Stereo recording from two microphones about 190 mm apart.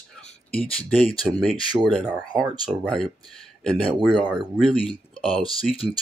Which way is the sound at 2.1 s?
20° right (ahead or behind).